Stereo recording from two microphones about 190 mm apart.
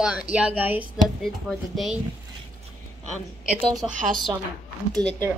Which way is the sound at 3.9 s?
45° right (ahead or behind).